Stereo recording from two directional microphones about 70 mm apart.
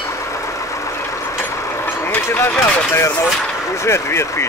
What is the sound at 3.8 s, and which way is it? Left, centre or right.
Speech, left.